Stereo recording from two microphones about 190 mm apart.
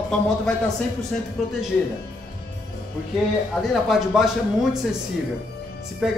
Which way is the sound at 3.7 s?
Centre (ahead or behind).